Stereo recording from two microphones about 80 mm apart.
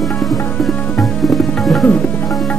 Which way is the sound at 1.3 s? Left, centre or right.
Centre.